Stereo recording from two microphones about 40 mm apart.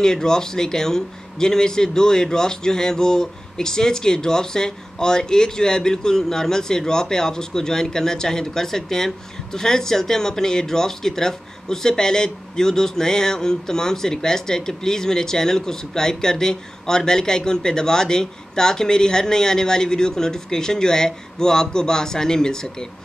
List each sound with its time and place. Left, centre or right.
0.0 s a man's voice: centre